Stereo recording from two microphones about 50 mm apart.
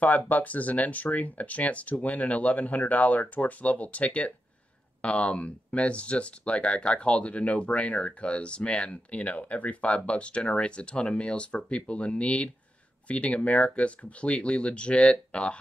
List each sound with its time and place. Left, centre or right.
0.3 s speech: left